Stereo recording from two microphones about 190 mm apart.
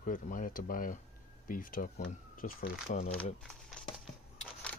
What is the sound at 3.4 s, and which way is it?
Crumpling, centre (ahead or behind).